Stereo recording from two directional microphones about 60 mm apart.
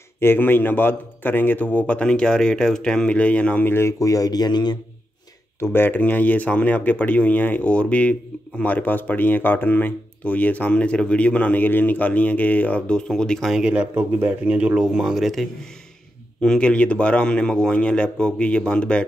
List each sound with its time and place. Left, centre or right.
0.2 s speech: left
3.6 s speech: left
4.0 s speech: left
5.6 s speech: left; by 13.5 s centre
13.5 s speech: centre
15.1 s a man's voice: centre
16.3 s a man's voice: centre